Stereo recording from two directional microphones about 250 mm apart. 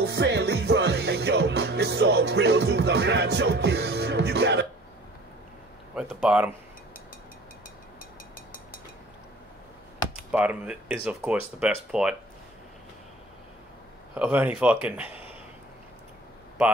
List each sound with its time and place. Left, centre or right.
0.0 s music: right
5.9 s speech: centre
10.3 s speech: centre
14.1 s speech: centre